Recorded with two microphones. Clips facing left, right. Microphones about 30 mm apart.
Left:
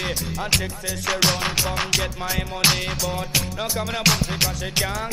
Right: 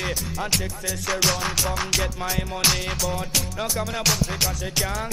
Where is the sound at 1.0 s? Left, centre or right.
Centre.